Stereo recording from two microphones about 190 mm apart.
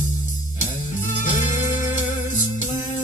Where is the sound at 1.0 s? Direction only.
40° left (ahead or behind).